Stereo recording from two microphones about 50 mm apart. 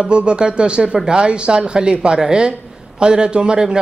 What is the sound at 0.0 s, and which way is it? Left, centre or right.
A man's voice, right.